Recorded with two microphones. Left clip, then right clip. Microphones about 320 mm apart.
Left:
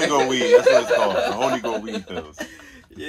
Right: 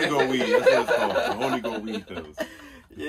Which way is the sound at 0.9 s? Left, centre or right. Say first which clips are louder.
Left 4 dB; centre.